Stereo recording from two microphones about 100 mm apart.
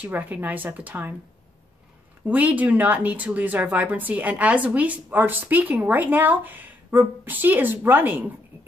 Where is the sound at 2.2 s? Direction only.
15° right (ahead or behind).